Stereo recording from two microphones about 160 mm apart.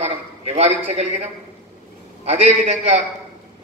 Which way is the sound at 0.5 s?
45° right (ahead or behind).